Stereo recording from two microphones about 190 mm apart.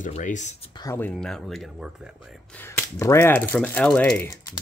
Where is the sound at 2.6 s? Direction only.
15° left (ahead or behind).